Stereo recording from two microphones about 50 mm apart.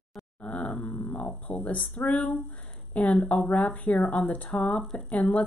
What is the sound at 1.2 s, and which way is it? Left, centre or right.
A woman's voice, left.